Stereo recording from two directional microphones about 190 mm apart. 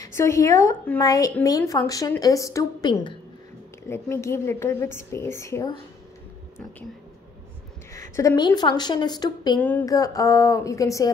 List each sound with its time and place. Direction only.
0.0 s a woman's voice: 15° left (ahead or behind)
3.8 s a woman's voice: 15° left (ahead or behind)
7.9 s a woman's voice: 15° left (ahead or behind)
9.6 s a woman's voice: 10° left (ahead or behind)